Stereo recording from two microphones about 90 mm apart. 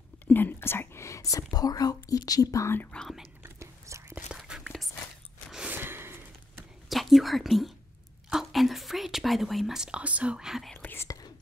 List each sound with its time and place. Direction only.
0.3 s speech: 20° left (ahead or behind); by 2.7 s 40° left (ahead or behind)
2.9 s speech: 5° left (ahead or behind)
3.4 s whispering: 35° right (ahead or behind)
4.3 s whispering: 5° right (ahead or behind)
5.7 s a sound: 25° right (ahead or behind)
6.9 s whispering: centre (ahead or behind)
8.3 s speech: 5° right (ahead or behind)
10.8 s whispering: 20° left (ahead or behind)
11.1 s whispering: 45° left (ahead or behind)